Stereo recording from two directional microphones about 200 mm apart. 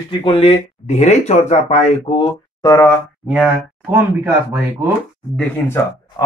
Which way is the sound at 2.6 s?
15° left (ahead or behind).